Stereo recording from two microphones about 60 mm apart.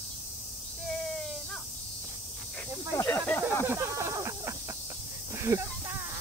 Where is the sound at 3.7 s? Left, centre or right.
Right.